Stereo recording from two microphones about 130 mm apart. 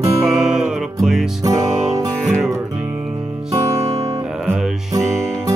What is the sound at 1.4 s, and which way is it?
Music, 25° right (ahead or behind).